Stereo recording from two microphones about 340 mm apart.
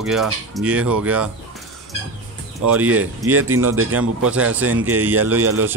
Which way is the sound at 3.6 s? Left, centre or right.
Right.